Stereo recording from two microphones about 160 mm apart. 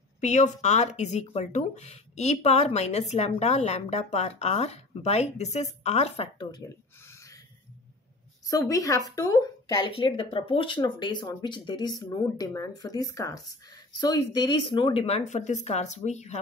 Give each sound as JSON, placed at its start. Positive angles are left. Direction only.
{"t": 0.2, "sound": "a woman's voice", "side_deg": 50}
{"t": 6.5, "sound": "a sound", "side_deg": 15}
{"t": 8.5, "sound": "a woman's voice", "side_deg": 20}